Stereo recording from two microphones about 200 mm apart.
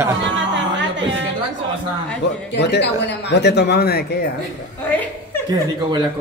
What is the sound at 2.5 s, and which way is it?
Speech, 55° left (ahead or behind).